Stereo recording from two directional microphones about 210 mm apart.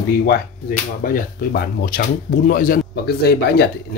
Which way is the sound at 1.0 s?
45° left (ahead or behind).